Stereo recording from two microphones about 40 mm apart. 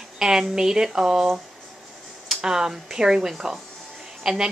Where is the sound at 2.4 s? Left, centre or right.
Centre.